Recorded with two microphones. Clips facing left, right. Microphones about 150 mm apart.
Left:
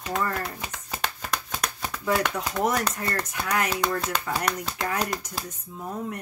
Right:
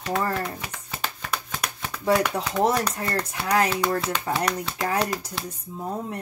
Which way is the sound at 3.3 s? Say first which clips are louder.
Right 6 dB; 30° right (ahead or behind).